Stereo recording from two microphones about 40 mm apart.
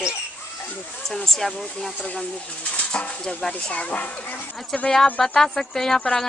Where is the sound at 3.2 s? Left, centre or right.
Left.